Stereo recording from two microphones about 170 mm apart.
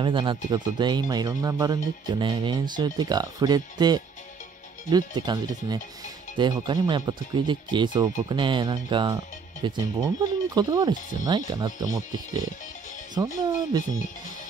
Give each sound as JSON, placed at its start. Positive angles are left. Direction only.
{"t": 0.0, "sound": "speech", "side_deg": -30}